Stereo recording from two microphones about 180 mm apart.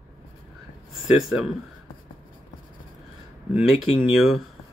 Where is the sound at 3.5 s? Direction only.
5° right (ahead or behind).